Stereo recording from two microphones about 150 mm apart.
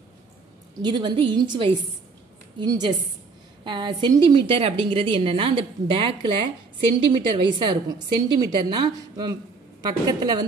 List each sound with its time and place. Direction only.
0.7 s a woman's voice: 30° right (ahead or behind)
7.3 s a woman's voice: 30° right (ahead or behind)